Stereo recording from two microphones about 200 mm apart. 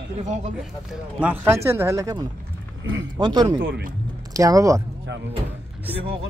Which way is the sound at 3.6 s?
70° right (ahead or behind).